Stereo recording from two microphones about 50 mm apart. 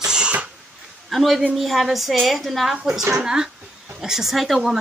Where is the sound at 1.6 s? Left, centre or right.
Centre.